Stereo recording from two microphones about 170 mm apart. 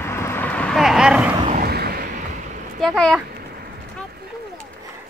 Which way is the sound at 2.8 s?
Centre (ahead or behind).